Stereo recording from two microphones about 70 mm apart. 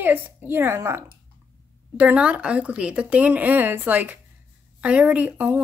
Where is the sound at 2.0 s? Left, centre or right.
Centre.